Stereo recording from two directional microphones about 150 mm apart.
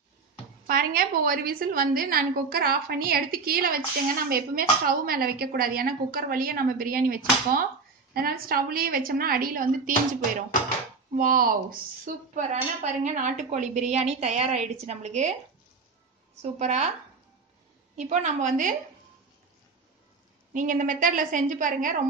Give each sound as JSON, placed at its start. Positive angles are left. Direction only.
{"t": 0.7, "sound": "a woman's voice", "side_deg": -75}
{"t": 8.1, "sound": "speech", "side_deg": -85}
{"t": 12.4, "sound": "a woman's voice", "side_deg": -55}
{"t": 16.5, "sound": "a woman's voice", "side_deg": -50}
{"t": 17.9, "sound": "a woman's voice", "side_deg": -55}
{"t": 20.5, "sound": "a woman's voice", "side_deg": -60}